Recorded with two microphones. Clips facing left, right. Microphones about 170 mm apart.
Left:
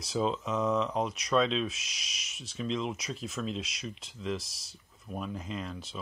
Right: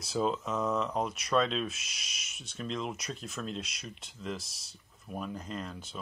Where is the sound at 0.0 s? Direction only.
Centre (ahead or behind).